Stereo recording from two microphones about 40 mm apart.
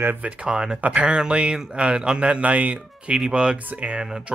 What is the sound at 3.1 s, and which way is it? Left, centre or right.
Speech, right.